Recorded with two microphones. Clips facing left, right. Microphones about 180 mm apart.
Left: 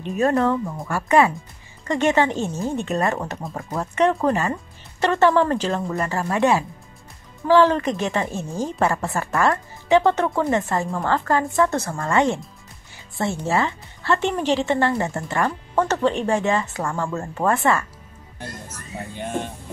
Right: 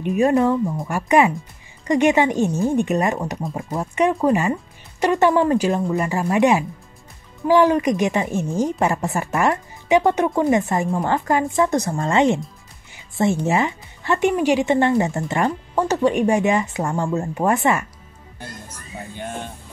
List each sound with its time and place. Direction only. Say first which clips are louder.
0.0 s a woman's voice: right 3 dB; 15° right (ahead or behind)
18.9 s speech: left 3 dB; centre (ahead or behind)